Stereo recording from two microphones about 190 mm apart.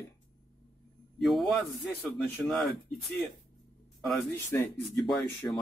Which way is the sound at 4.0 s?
Centre (ahead or behind).